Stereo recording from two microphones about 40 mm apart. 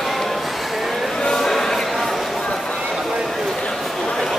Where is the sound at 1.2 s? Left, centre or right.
Centre.